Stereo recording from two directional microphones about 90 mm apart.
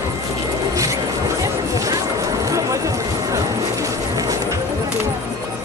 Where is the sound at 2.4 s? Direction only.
35° right (ahead or behind).